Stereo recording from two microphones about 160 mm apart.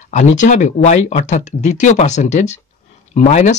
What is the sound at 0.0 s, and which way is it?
Speech, 45° left (ahead or behind).